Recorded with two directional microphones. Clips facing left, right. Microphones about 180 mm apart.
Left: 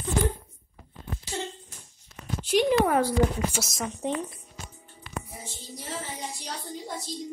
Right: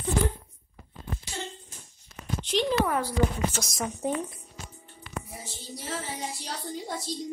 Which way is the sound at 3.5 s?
Centre (ahead or behind).